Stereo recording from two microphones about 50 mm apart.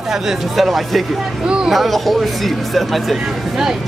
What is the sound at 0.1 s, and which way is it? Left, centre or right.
Speech, centre.